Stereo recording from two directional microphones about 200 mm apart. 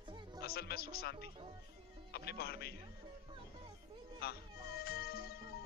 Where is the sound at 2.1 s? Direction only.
50° left (ahead or behind).